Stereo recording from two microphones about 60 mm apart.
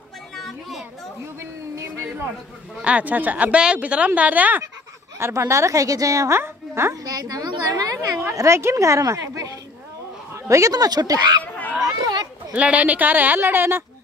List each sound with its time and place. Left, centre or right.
0.4 s a sound: centre
1.4 s a sound: right
2.8 s a woman's voice: right
5.2 s a woman's voice: right
6.3 s a woman's voice: right
7.1 s a woman's voice: right
8.2 s a woman's voice: right
11.5 s children playing: left
12.5 s speech: right